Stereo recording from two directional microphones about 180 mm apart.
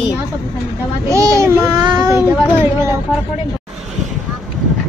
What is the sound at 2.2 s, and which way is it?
Speech, 10° right (ahead or behind).